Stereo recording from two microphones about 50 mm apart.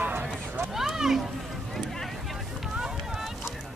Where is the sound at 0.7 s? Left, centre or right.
Centre.